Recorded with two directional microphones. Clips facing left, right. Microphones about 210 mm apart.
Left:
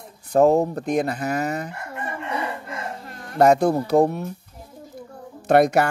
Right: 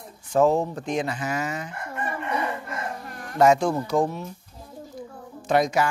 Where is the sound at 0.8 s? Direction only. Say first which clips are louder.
Left 4 dB; 60° left (ahead or behind).